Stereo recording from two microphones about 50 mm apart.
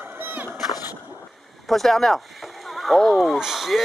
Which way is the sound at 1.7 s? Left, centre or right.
Centre.